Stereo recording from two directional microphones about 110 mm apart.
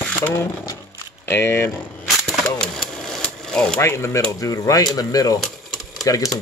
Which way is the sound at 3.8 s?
25° left (ahead or behind).